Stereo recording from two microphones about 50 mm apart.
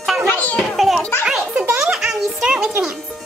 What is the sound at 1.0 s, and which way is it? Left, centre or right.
Music, left.